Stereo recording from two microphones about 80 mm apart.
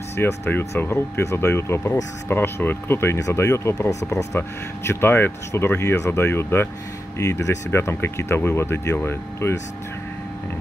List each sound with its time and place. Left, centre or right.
0.1 s speech: left
4.4 s speech: left
7.2 s speech: left